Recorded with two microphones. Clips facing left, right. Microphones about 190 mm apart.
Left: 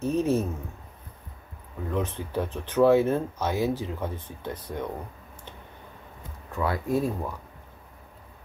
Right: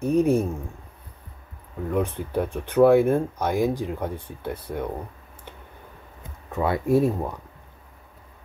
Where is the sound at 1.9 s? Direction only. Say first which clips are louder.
Right 4 dB; 15° right (ahead or behind).